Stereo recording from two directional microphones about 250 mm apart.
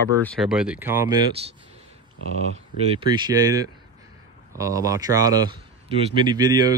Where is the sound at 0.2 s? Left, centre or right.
Centre.